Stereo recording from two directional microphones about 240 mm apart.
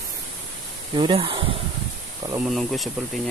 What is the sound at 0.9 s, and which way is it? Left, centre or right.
Speech, right.